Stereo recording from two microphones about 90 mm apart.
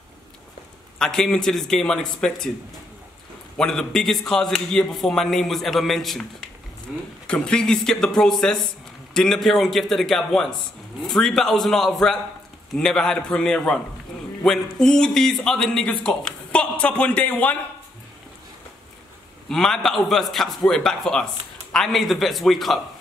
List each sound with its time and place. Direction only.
0.9 s a man's voice: 5° left (ahead or behind)
3.5 s a man's voice: 5° left (ahead or behind)
6.9 s speech: 10° right (ahead or behind)
7.2 s a man's voice: 10° left (ahead or behind)
19.5 s a man's voice: 5° left (ahead or behind)